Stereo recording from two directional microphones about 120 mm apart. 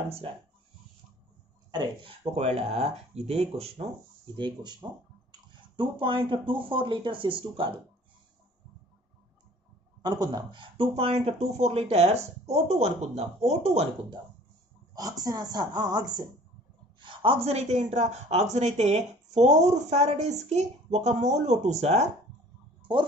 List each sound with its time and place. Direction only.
1.7 s a woman's voice: 40° right (ahead or behind)
2.3 s speech: 55° right (ahead or behind)
4.4 s a woman's voice: 40° right (ahead or behind)
5.8 s speech: 45° right (ahead or behind)
10.0 s speech: 35° right (ahead or behind); by 13.8 s 60° right (ahead or behind)
15.0 s a woman's voice: 30° right (ahead or behind); by 22.0 s 70° right (ahead or behind)